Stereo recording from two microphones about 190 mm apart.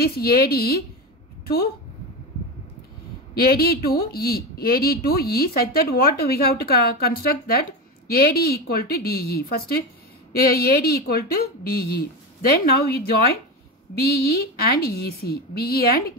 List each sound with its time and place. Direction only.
0.0 s a woman's voice: 55° left (ahead or behind)
3.3 s speech: 55° left (ahead or behind)
14.2 s speech: 50° left (ahead or behind)